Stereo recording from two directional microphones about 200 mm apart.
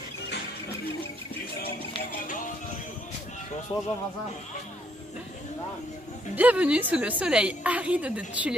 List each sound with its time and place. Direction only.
3.7 s speech: 25° left (ahead or behind)
6.3 s a woman's voice: 10° right (ahead or behind)